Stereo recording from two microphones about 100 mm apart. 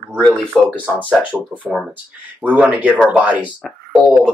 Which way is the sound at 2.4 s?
15° right (ahead or behind).